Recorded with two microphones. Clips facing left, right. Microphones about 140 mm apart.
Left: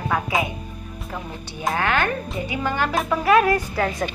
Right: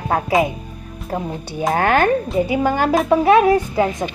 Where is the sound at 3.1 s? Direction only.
30° right (ahead or behind).